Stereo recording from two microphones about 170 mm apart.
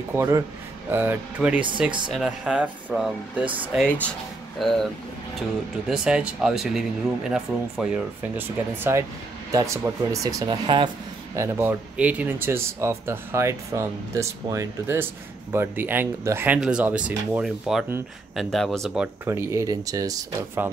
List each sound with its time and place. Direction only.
0.1 s speech: 15° right (ahead or behind)
4.6 s speech: centre (ahead or behind)
5.9 s speech: 5° right (ahead or behind)
19.2 s speech: 15° right (ahead or behind)